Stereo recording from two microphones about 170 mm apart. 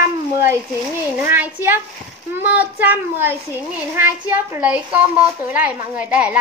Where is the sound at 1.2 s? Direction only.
10° right (ahead or behind).